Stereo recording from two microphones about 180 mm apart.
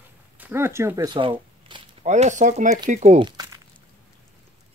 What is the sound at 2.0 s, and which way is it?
Speech, 40° right (ahead or behind).